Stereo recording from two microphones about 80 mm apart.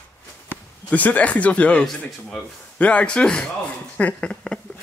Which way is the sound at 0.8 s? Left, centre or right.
Centre.